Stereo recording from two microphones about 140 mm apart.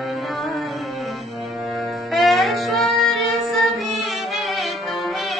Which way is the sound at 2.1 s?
Centre (ahead or behind).